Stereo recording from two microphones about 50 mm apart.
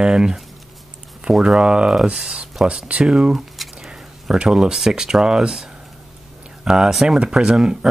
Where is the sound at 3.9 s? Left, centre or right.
Centre.